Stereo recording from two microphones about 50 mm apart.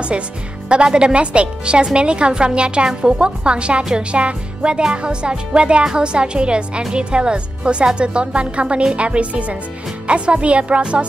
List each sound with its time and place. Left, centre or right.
0.7 s a woman's voice: right